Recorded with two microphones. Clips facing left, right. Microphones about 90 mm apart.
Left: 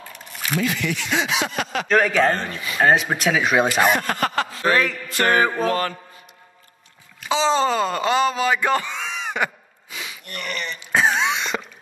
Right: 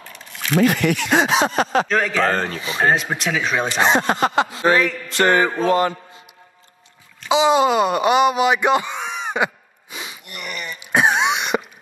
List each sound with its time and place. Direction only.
0.3 s a sound: 5° left (ahead or behind)
0.6 s speech: 50° right (ahead or behind); by 1.9 s 35° right (ahead or behind)
1.9 s speech: 5° left (ahead or behind)
3.8 s speech: 20° right (ahead or behind)
7.2 s wail: 15° right (ahead or behind)
10.2 s a sound: 10° right (ahead or behind)